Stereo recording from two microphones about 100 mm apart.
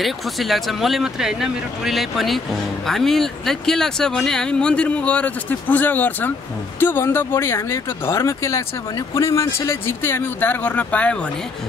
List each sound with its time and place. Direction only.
0.0 s speech: centre (ahead or behind)